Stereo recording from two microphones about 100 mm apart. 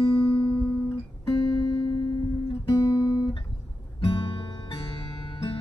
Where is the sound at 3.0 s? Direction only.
50° left (ahead or behind).